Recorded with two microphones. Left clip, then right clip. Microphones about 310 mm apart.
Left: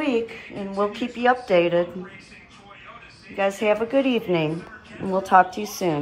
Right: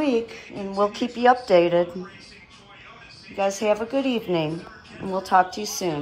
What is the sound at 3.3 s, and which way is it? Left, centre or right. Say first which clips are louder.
Speech: left 1 dB; centre.